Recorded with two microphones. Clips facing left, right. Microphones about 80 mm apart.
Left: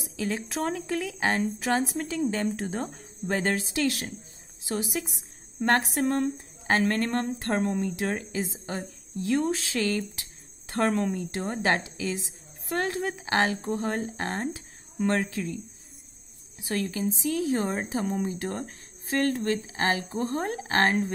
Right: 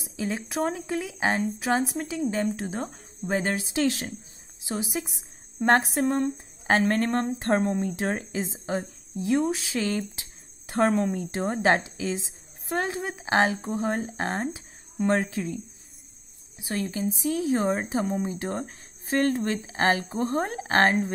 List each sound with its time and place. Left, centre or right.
0.0 s a woman's voice: right; by 3.0 s centre
3.3 s speech: centre
3.7 s a woman's voice: right
9.4 s speech: centre
9.7 s a woman's voice: right
16.5 s a woman's voice: centre